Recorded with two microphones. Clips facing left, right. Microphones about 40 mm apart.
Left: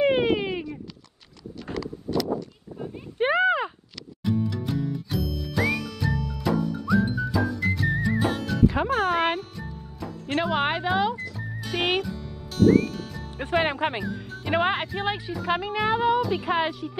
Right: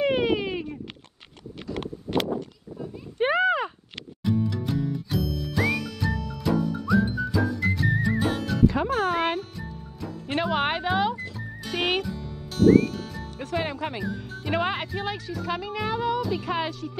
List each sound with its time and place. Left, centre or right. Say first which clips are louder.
0.1 s baby cry: left 1 dB; centre
1.7 s a sound: even; left
3.2 s clip-clop: left 1 dB; centre
4.2 s music: even; centre
13.4 s speech: left 5 dB; left
14.0 s music: even; centre
14.5 s speech: left 3 dB; centre